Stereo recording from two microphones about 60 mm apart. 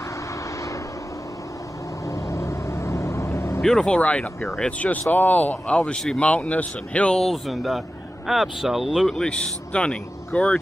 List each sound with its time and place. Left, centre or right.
2.0 s vehicle: left
3.6 s speech: centre
7.2 s speech: centre
9.1 s speech: centre